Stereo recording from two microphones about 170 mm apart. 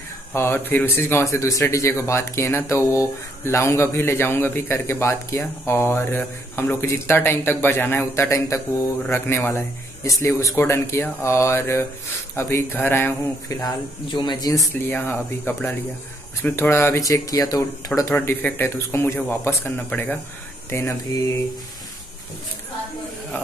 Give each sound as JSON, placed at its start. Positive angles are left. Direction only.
{"t": 0.3, "sound": "speech", "side_deg": 15}